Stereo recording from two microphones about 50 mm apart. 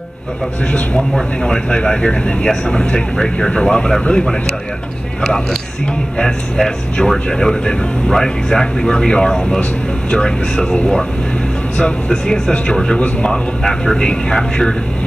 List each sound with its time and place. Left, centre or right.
0.7 s a man's voice: left
6.1 s speech: centre
11.8 s speech: centre